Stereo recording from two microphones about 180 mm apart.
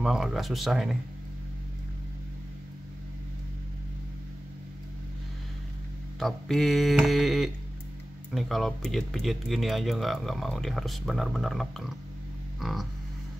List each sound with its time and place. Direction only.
0.0 s speech: centre (ahead or behind)
6.1 s speech: centre (ahead or behind)
12.5 s a sound: centre (ahead or behind)